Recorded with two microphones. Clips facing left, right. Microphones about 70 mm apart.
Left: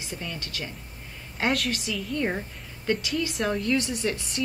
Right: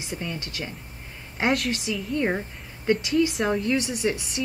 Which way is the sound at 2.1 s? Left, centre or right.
Centre.